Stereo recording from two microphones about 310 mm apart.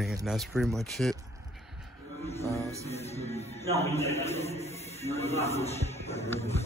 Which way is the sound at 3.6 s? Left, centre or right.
Centre.